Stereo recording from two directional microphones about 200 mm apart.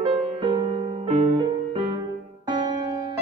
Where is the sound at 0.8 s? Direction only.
35° right (ahead or behind).